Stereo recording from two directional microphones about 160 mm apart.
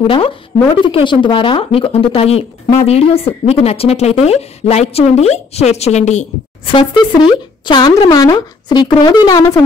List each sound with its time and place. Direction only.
0.0 s speech: 35° left (ahead or behind)
6.7 s speech: 30° left (ahead or behind)